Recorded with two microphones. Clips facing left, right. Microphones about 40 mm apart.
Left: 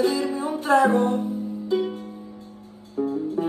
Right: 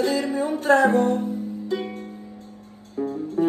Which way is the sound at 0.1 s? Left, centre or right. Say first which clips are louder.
Right 2 dB; right.